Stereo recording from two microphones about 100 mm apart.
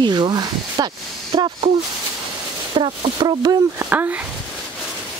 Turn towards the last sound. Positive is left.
turn(degrees=-20)  # may be behind; listen again after turning